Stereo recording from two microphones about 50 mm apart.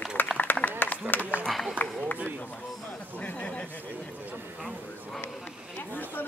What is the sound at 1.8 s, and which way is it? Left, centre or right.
Speech, left.